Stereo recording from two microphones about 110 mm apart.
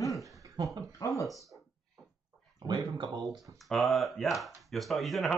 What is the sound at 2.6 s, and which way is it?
Speech, 40° right (ahead or behind).